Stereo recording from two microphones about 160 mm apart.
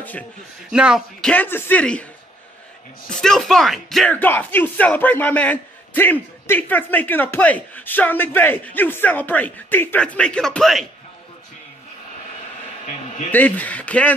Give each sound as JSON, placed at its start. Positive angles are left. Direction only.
{"t": 0.7, "sound": "a man's voice", "side_deg": -5}
{"t": 1.3, "sound": "speech", "side_deg": 10}
{"t": 3.1, "sound": "speech", "side_deg": 5}
{"t": 13.3, "sound": "speech", "side_deg": 10}